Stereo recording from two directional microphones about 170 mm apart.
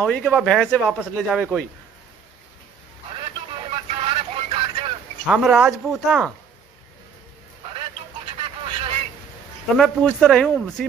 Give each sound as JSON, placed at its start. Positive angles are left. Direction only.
{"t": 0.0, "sound": "speech", "side_deg": 5}
{"t": 3.7, "sound": "vehicle", "side_deg": -35}
{"t": 5.2, "sound": "speech", "side_deg": -5}
{"t": 8.4, "sound": "a sound", "side_deg": -30}
{"t": 9.8, "sound": "speech", "side_deg": 5}